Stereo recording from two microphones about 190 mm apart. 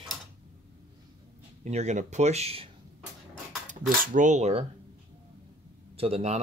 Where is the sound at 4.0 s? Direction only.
45° right (ahead or behind).